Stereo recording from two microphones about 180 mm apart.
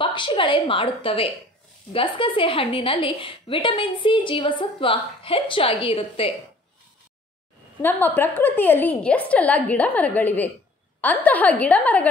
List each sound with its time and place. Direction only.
0.0 s a woman's voice: 25° left (ahead or behind)
7.8 s a woman's voice: 10° left (ahead or behind)